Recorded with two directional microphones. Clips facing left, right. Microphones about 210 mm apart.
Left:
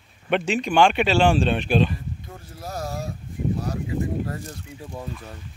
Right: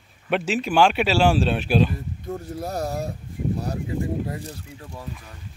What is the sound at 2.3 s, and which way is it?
Speech, 35° right (ahead or behind).